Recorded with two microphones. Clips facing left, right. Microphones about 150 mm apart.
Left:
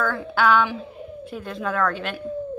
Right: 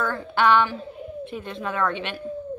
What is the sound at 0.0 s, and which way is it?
A woman's voice, 5° left (ahead or behind).